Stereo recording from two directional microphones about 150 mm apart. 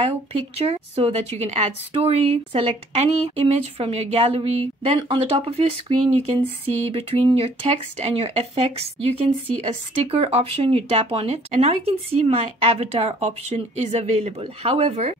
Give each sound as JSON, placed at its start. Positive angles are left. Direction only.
{"t": 0.6, "sound": "a woman's voice", "side_deg": -45}